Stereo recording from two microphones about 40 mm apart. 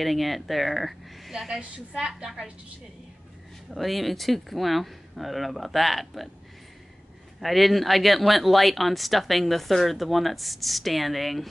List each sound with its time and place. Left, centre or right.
0.0 s speech: centre
2.0 s a woman's voice: centre
3.7 s speech: centre
7.3 s speech: centre